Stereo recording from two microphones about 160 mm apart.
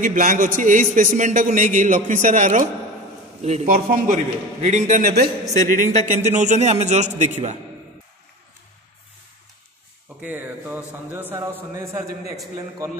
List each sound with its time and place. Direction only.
0.0 s a man's voice: 55° right (ahead or behind)
4.6 s a man's voice: 45° right (ahead or behind); by 5.3 s 70° right (ahead or behind)
5.7 s a man's voice: 50° right (ahead or behind)
10.2 s a man's voice: 10° right (ahead or behind)